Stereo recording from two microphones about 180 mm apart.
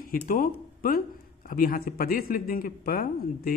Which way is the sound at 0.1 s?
50° left (ahead or behind).